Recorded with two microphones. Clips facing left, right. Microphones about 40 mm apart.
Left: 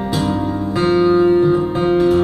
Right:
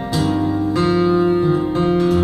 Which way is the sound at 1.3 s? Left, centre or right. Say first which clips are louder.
Left 3 dB; centre.